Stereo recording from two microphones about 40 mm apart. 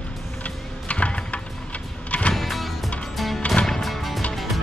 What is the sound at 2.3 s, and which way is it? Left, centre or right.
Music, centre.